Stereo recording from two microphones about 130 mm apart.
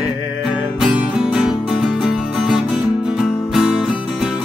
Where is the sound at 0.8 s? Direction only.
5° right (ahead or behind).